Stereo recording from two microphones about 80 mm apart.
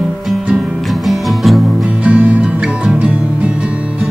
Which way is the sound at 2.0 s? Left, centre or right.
Centre.